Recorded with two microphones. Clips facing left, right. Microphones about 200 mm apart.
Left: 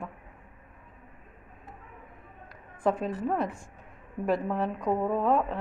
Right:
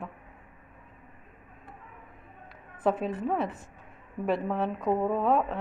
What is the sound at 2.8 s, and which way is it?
A woman's voice, 5° right (ahead or behind).